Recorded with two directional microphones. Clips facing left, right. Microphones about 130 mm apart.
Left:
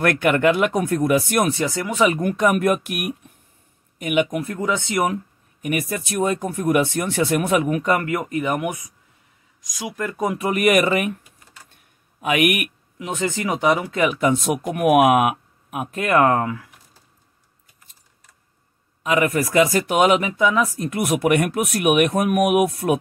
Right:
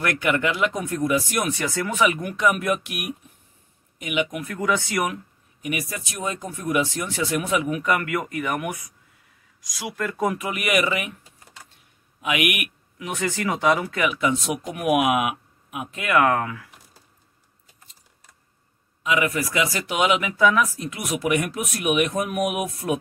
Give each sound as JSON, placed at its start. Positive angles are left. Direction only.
{"t": 0.0, "sound": "speech", "side_deg": 55}
{"t": 1.5, "sound": "speech", "side_deg": 25}
{"t": 2.0, "sound": "speech", "side_deg": 45}
{"t": 4.4, "sound": "speech", "side_deg": 25}
{"t": 5.6, "sound": "speech", "side_deg": 50}
{"t": 7.8, "sound": "speech", "side_deg": 30}
{"t": 10.3, "sound": "speech", "side_deg": 40}
{"t": 12.2, "sound": "speech", "side_deg": 45}
{"t": 13.0, "sound": "speech", "side_deg": 25}
{"t": 14.0, "sound": "speech", "side_deg": 40}
{"t": 19.0, "sound": "speech", "side_deg": 45}
{"t": 20.2, "sound": "speech", "side_deg": 25}
{"t": 20.7, "sound": "speech", "side_deg": 50}